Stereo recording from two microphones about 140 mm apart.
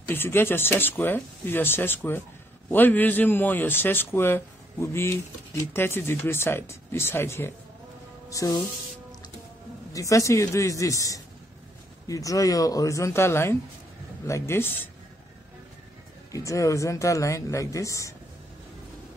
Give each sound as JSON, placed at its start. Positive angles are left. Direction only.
{"t": 0.0, "sound": "a man's voice", "side_deg": 15}
{"t": 8.3, "sound": "music", "side_deg": 25}
{"t": 9.9, "sound": "speech", "side_deg": 25}
{"t": 16.3, "sound": "speech", "side_deg": 25}